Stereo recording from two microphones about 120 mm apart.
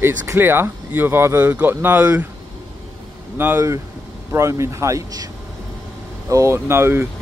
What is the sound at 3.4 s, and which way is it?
Speech, 20° right (ahead or behind).